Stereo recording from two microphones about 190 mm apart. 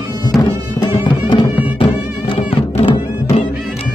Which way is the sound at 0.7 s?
25° left (ahead or behind).